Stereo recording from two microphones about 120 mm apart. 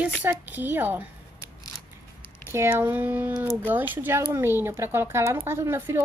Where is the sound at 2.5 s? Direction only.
20° right (ahead or behind).